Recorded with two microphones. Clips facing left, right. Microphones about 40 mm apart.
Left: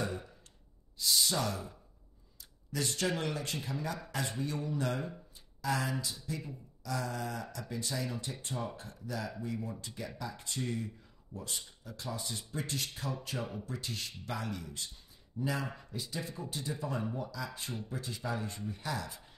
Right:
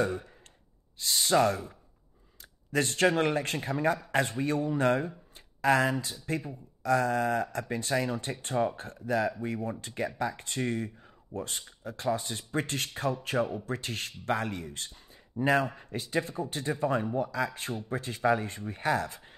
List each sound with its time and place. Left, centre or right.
0.9 s speech: right
2.7 s speech: right